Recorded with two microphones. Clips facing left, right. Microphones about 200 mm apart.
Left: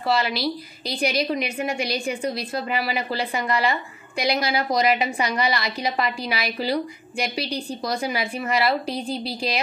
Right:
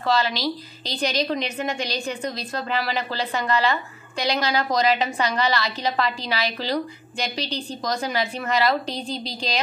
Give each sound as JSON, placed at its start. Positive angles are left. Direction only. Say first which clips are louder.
{"t": 0.0, "sound": "a woman's voice", "louder": "even", "side_deg": 10}